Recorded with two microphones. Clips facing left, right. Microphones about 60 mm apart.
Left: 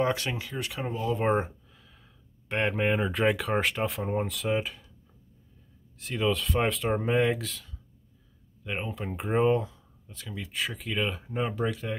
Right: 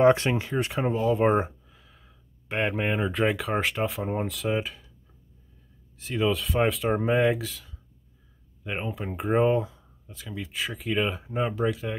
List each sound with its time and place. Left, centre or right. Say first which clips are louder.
0.0 s speech: right 8 dB; right
1.1 s speech: even; centre
5.9 s speech: right 2 dB; centre